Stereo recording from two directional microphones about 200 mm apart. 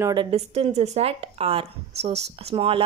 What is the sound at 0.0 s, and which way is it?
Speech, 25° right (ahead or behind).